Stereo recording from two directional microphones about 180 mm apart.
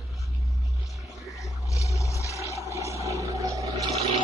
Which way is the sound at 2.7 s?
15° right (ahead or behind).